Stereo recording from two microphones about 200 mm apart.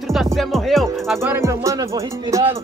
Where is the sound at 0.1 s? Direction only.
Centre (ahead or behind).